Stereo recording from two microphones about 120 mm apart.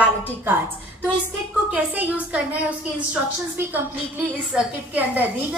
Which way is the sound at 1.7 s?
10° right (ahead or behind).